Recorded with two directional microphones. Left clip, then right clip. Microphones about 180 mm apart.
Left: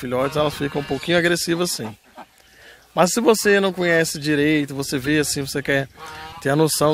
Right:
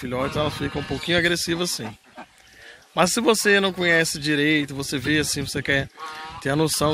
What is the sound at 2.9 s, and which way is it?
Speech, 40° left (ahead or behind).